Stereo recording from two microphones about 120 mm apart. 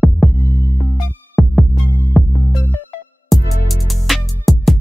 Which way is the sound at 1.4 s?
Centre (ahead or behind).